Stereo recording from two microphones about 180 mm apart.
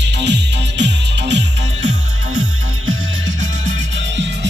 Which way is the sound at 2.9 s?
90° right.